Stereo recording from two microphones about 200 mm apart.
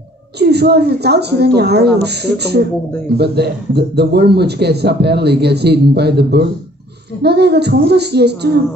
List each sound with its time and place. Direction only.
0.4 s a man's voice: 55° right (ahead or behind)